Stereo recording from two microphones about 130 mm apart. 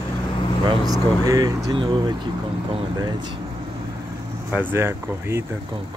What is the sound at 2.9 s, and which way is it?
Speech, 35° right (ahead or behind).